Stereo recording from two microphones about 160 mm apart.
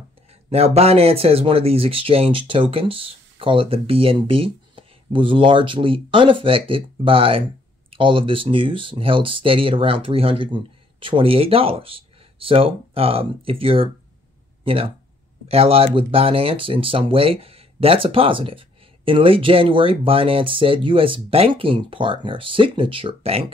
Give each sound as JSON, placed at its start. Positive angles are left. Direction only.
{"t": 0.5, "sound": "speech", "side_deg": -40}